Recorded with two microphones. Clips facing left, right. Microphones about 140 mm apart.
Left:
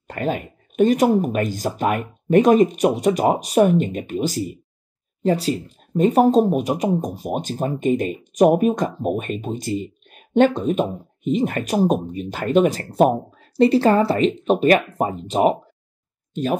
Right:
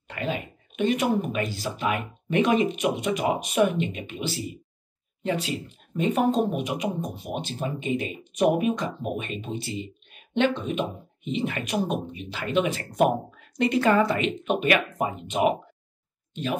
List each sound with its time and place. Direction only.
0.1 s speech: 45° left (ahead or behind)